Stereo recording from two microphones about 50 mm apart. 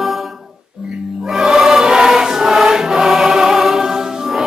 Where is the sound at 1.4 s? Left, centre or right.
Centre.